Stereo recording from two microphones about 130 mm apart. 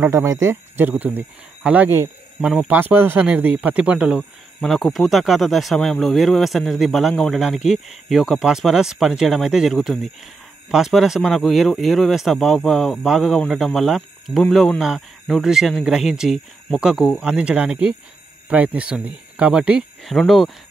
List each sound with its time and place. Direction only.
0.0 s speech: 20° right (ahead or behind)
2.4 s speech: 5° left (ahead or behind)
2.7 s speech: 15° right (ahead or behind)
4.6 s speech: centre (ahead or behind)